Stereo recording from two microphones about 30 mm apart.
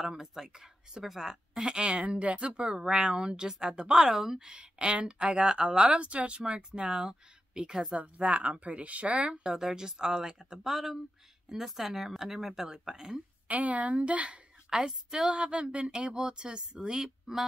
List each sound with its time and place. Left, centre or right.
0.2 s speech: centre
1.7 s speech: right
2.0 s speech: right
3.4 s speech: centre
4.6 s speech: right
5.9 s speech: right
8.0 s speech: right
9.3 s speech: right
10.7 s speech: centre
12.6 s speech: right
13.5 s a woman's voice: right
14.0 s a woman's voice: right
14.9 s speech: centre
15.2 s speech: right; by 17.5 s centre